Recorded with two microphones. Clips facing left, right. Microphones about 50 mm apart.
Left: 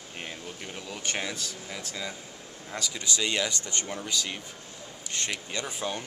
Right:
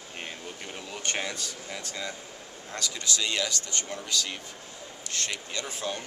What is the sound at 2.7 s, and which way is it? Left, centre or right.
A man's voice, centre.